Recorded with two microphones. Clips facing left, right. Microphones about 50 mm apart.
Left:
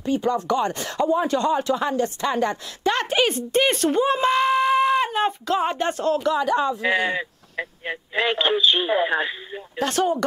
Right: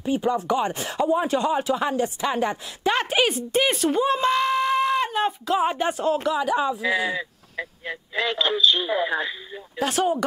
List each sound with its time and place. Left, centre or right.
0.0 s speech: centre
6.8 s speech: left
9.8 s speech: centre